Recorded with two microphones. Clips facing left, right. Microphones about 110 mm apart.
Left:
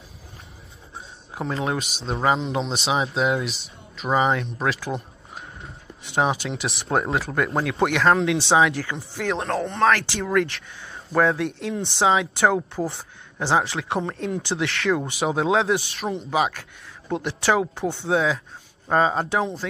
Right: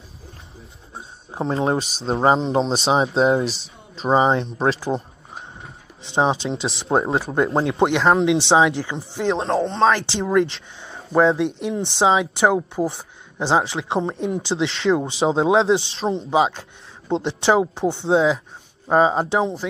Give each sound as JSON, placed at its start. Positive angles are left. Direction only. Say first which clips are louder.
{"t": 1.3, "sound": "speech", "louder": "right 5 dB", "side_deg": -30}